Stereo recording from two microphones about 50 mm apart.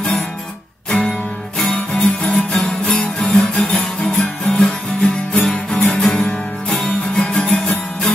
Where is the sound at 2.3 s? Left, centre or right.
Centre.